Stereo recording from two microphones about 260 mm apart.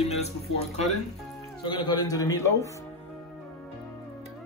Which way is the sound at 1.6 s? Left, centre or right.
Centre.